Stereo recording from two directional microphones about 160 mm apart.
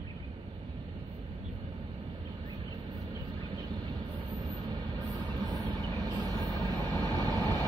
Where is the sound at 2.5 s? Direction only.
25° right (ahead or behind).